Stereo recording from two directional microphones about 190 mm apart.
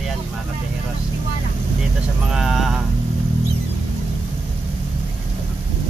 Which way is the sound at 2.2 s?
Centre (ahead or behind).